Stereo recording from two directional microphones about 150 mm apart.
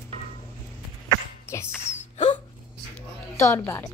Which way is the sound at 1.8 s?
50° left (ahead or behind).